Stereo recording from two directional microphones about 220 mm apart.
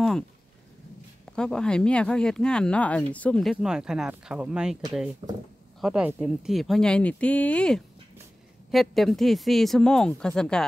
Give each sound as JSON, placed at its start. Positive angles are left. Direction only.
{"t": 1.3, "sound": "speech", "side_deg": 5}
{"t": 5.2, "sound": "speech", "side_deg": -20}
{"t": 5.8, "sound": "speech", "side_deg": 0}